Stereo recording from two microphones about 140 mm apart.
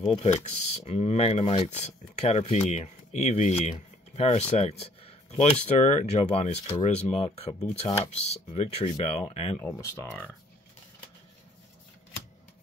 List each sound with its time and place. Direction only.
0.1 s speech: 50° left (ahead or behind)
9.6 s speech: 20° left (ahead or behind)